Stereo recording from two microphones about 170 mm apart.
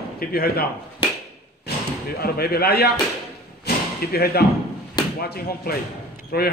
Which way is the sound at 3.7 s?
75° left (ahead or behind).